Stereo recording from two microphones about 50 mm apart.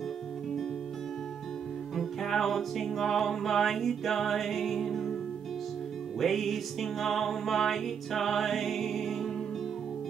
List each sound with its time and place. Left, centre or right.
2.0 s music: centre
6.1 s music: centre